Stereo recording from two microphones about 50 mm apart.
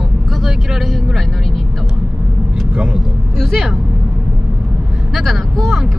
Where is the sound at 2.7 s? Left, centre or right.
Centre.